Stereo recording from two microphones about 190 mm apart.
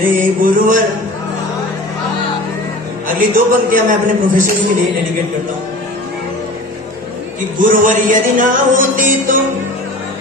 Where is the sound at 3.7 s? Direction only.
45° right (ahead or behind).